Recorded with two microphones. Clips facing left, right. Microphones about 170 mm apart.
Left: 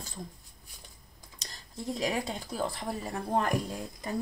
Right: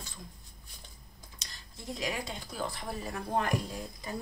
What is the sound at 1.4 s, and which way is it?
Speech, 40° left (ahead or behind).